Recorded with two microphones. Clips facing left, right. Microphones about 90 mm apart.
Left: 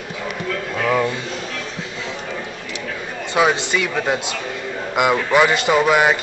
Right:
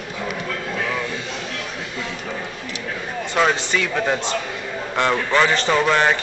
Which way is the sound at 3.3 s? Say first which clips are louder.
Left 2 dB; 10° left (ahead or behind).